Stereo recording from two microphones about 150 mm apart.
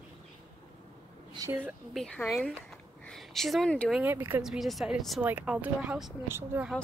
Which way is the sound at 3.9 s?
10° right (ahead or behind).